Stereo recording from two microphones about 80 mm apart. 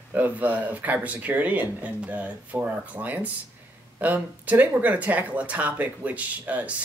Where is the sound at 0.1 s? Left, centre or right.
Right.